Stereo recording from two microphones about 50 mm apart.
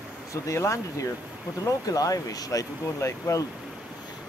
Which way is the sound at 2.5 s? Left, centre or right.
Left.